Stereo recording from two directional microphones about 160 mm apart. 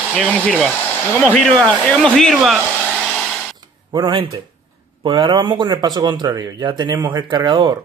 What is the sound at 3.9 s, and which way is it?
Speech, 30° right (ahead or behind).